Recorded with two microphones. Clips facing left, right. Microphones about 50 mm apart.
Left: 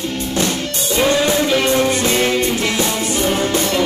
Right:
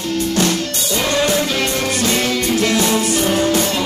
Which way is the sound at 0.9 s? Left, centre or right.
Left.